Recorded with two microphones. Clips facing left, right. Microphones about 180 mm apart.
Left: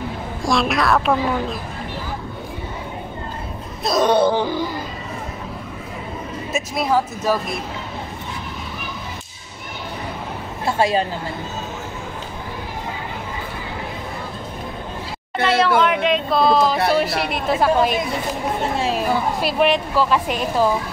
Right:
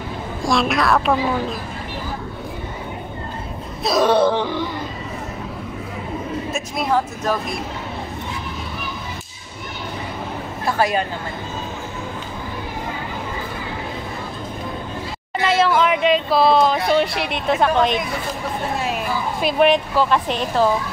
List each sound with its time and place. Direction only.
0.4 s a child's voice: centre (ahead or behind)
3.8 s speech: centre (ahead or behind)
6.5 s speech: centre (ahead or behind)
10.6 s speech: 25° left (ahead or behind)
15.4 s speech: centre (ahead or behind)
18.8 s speech: 30° left (ahead or behind)
19.4 s speech: centre (ahead or behind)